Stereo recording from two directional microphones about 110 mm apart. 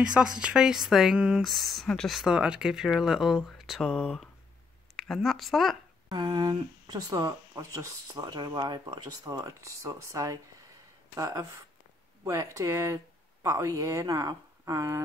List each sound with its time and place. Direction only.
0.0 s speech: 5° right (ahead or behind)
6.0 s speech: 40° right (ahead or behind)